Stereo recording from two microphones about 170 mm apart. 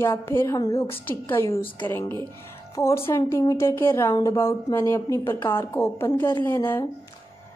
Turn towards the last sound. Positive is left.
turn(degrees=15)  # may be behind; listen again after turning